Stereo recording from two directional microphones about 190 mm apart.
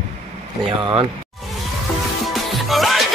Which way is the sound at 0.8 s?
25° right (ahead or behind).